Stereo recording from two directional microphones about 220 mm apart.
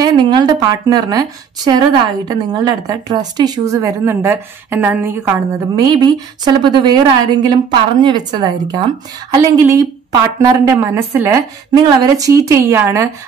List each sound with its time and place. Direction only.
0.0 s a woman's voice: 20° right (ahead or behind)